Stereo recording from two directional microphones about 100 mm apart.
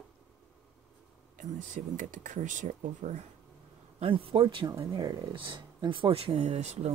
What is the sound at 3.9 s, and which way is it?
Speech, 70° right (ahead or behind).